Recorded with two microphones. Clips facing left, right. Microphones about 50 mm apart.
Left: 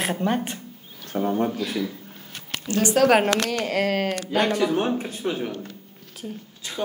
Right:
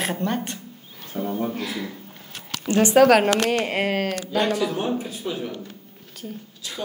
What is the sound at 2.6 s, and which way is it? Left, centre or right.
Speech, right.